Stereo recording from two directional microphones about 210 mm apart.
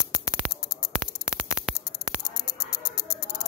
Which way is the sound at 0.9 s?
5° right (ahead or behind).